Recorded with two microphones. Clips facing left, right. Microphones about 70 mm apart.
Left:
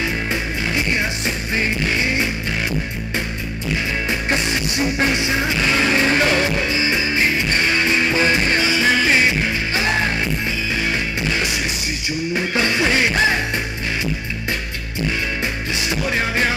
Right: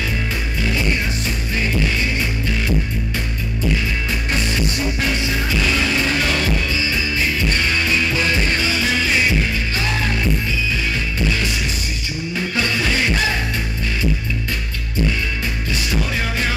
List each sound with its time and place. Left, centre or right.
4.3 s music: left
5.9 s music: left
12.4 s music: left